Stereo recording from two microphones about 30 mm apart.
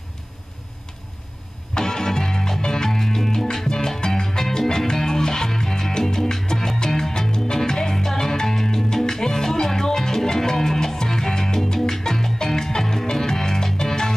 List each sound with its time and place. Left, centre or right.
1.8 s music: centre